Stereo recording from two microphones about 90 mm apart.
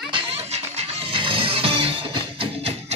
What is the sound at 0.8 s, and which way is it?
Music, 85° right.